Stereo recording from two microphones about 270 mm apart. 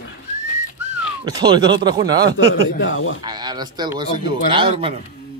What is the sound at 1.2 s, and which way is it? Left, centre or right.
A man's voice, centre.